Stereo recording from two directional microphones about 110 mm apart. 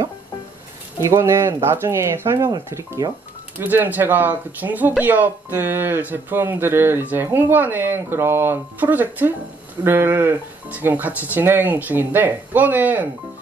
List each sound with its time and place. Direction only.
1.0 s speech: 25° right (ahead or behind)